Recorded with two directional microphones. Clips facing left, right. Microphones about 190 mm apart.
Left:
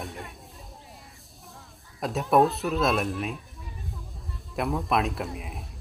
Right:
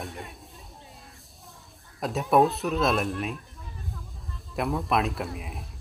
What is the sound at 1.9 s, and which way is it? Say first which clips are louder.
Speech: even; centre (ahead or behind).